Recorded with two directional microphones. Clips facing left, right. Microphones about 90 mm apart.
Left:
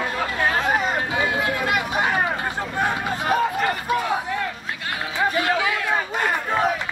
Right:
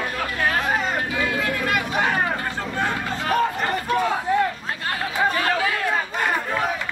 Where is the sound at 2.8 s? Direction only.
15° left (ahead or behind).